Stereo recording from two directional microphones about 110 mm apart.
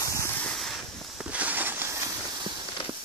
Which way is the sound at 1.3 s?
15° right (ahead or behind).